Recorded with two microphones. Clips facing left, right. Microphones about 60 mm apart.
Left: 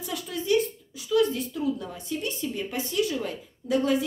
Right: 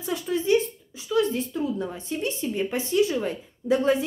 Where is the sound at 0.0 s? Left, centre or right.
Right.